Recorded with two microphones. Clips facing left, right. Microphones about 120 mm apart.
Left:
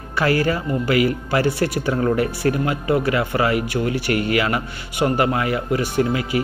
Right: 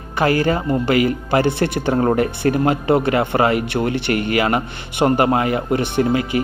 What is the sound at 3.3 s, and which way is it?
A man's voice, 40° right (ahead or behind).